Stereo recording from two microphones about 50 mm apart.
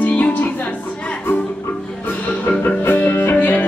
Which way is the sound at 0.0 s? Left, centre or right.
Left.